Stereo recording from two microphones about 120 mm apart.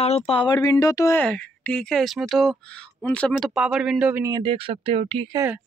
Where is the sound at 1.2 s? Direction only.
10° left (ahead or behind); by 4.2 s 10° right (ahead or behind).